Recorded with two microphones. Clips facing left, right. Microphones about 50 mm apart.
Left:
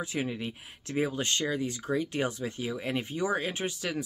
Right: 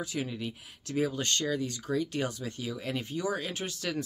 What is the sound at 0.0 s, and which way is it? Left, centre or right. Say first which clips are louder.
Speech: left 2 dB; left.